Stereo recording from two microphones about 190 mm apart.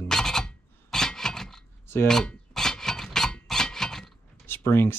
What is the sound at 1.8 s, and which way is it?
Filing, 10° left (ahead or behind).